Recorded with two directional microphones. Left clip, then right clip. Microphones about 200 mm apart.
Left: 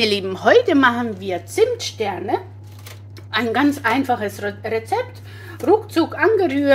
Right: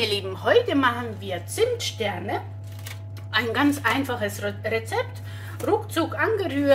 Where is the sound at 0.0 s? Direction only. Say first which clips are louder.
Left 7 dB; 40° left (ahead or behind).